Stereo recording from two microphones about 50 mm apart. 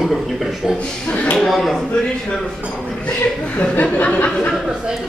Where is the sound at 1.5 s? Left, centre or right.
Centre.